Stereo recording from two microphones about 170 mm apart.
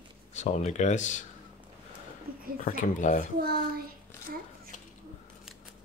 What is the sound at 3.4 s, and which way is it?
Speech, 65° right (ahead or behind).